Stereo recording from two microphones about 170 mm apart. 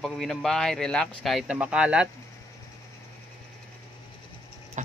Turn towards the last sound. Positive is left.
turn(degrees=-45)  # may be behind; listen again after turning